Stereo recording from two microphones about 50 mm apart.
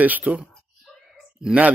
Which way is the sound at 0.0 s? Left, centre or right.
Right.